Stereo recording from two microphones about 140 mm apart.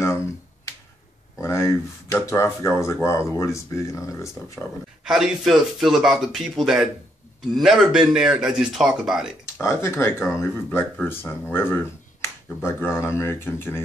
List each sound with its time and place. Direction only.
1.4 s speech: 20° left (ahead or behind)
5.0 s speech: 5° right (ahead or behind)
9.6 s speech: 20° left (ahead or behind)